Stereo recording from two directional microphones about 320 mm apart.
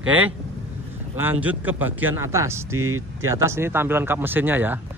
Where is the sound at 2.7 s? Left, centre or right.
Right.